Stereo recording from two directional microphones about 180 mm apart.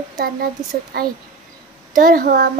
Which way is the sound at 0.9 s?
60° right (ahead or behind).